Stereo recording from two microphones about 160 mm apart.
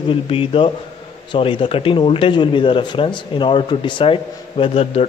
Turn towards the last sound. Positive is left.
turn(degrees=40)  # may be behind; listen again after turning